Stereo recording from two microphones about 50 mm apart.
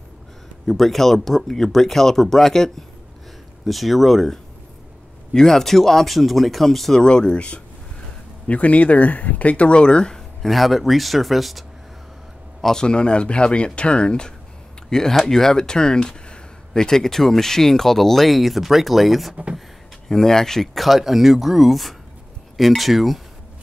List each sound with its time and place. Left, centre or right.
0.7 s speech: centre
7.0 s speech: centre
12.6 s speech: centre